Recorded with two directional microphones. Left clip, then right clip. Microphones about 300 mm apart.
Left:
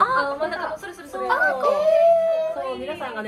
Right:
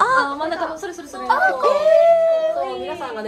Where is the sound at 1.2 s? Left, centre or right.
Right.